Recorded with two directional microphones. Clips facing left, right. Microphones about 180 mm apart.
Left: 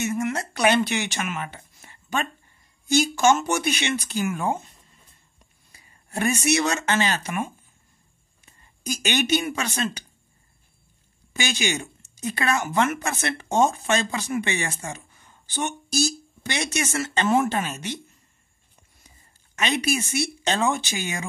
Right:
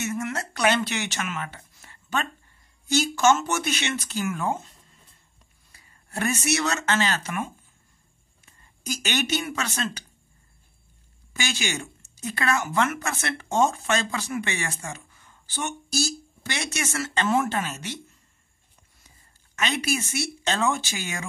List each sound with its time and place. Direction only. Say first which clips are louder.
0.0 s a woman's voice: left 3 dB; 15° left (ahead or behind)
8.8 s a woman's voice: left 3 dB; 15° left (ahead or behind)
11.3 s a woman's voice: left 3 dB; 20° left (ahead or behind)
19.5 s speech: left 2 dB; 20° left (ahead or behind)